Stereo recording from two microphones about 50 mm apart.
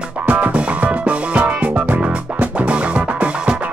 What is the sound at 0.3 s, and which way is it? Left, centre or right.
Music, right.